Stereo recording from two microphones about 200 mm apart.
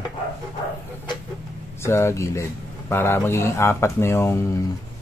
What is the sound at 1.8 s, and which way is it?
A man's voice, 15° left (ahead or behind).